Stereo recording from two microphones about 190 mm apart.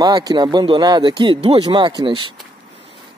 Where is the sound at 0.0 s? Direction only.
20° right (ahead or behind).